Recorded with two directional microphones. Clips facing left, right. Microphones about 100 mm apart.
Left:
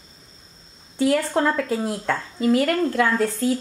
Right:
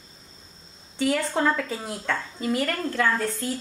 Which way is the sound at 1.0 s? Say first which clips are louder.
Left 4 dB; 5° left (ahead or behind).